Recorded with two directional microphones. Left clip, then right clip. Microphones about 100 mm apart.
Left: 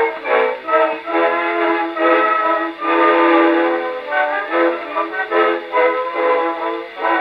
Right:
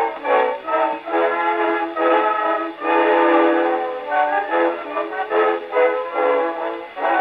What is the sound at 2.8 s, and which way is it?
Train, 35° right (ahead or behind).